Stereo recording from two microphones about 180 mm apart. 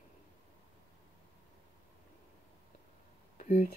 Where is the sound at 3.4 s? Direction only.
50° left (ahead or behind).